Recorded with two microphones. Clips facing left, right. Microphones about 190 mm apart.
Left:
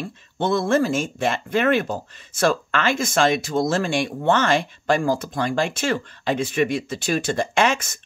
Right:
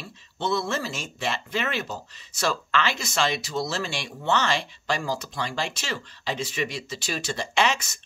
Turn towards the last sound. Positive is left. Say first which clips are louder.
# left 4 dB
turn(degrees=50)  # may be behind; listen again after turning